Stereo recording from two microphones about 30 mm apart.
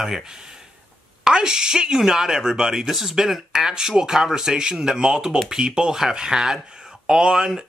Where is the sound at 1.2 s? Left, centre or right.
Right.